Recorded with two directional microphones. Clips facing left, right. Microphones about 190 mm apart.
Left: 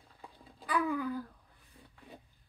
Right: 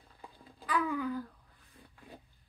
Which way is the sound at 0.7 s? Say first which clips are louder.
Left 1 dB; 10° left (ahead or behind).